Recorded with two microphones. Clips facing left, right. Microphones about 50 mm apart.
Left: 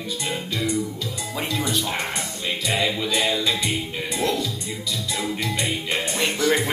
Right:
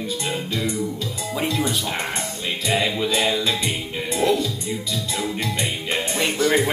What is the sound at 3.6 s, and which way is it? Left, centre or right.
Music, right.